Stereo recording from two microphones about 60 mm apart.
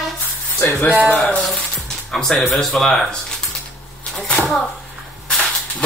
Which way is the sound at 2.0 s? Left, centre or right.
Centre.